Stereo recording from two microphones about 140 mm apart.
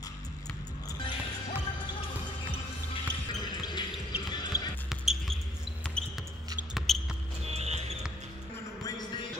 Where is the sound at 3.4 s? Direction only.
30° left (ahead or behind).